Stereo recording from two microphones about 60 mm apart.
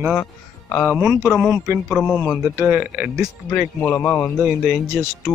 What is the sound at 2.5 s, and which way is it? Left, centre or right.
Speech, right.